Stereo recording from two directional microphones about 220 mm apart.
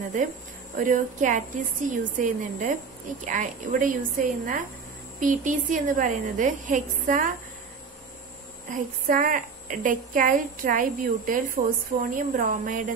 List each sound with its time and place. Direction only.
0.7 s a woman's voice: 35° right (ahead or behind)
8.6 s a woman's voice: 35° right (ahead or behind)